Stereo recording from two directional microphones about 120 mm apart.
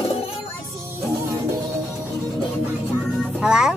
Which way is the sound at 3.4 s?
5° right (ahead or behind).